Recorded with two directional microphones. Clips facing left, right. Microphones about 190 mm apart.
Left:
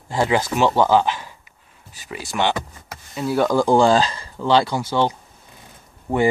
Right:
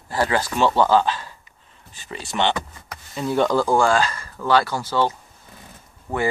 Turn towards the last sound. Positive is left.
turn(degrees=30)  # may be behind; listen again after turning